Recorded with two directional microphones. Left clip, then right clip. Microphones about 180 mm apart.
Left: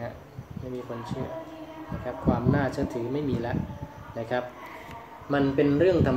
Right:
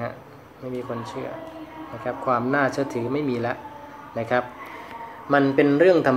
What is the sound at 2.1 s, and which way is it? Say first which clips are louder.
Speech: right 5 dB; 10° right (ahead or behind).